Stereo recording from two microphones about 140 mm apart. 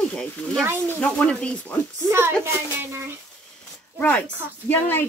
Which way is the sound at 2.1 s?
15° right (ahead or behind).